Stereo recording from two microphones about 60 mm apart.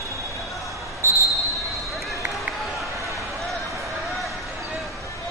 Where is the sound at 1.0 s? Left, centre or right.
Right.